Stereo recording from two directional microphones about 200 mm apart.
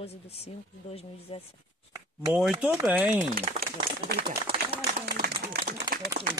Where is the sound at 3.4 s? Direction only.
45° right (ahead or behind).